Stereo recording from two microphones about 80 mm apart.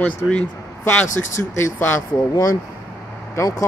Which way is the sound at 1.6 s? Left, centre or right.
Left.